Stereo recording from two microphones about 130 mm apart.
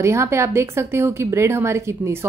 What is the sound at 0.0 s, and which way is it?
A woman's voice, 20° right (ahead or behind).